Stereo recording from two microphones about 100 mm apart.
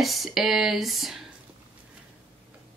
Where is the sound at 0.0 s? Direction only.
Centre (ahead or behind).